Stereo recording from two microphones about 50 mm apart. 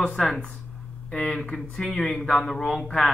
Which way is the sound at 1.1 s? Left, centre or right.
Centre.